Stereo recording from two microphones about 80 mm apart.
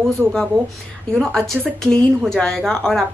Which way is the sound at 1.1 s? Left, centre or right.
Centre.